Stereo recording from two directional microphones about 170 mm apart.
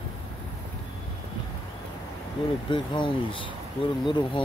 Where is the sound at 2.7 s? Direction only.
30° left (ahead or behind).